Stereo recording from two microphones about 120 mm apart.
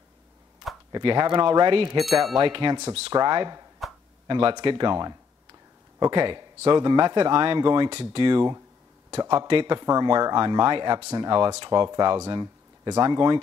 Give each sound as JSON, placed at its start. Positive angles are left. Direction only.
{"t": 0.9, "sound": "speech", "side_deg": -35}
{"t": 2.0, "sound": "speech", "side_deg": 0}
{"t": 2.3, "sound": "speech", "side_deg": -40}
{"t": 7.9, "sound": "speech", "side_deg": -50}